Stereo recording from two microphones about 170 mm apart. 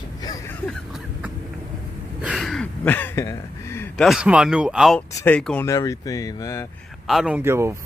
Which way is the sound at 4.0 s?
5° right (ahead or behind).